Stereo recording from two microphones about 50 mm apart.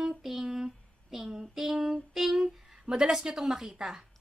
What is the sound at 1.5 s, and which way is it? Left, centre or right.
Speech, centre.